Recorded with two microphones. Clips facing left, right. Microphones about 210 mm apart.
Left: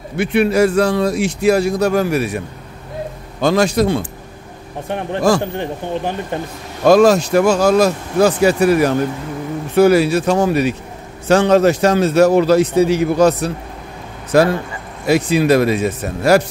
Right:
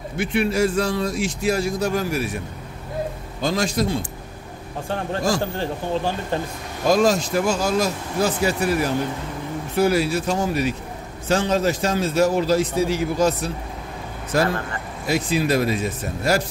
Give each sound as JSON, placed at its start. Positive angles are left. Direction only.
{"t": 0.2, "sound": "a man's voice", "side_deg": 65}
{"t": 3.3, "sound": "a man's voice", "side_deg": 70}
{"t": 4.8, "sound": "speech", "side_deg": 20}
{"t": 6.8, "sound": "a man's voice", "side_deg": 65}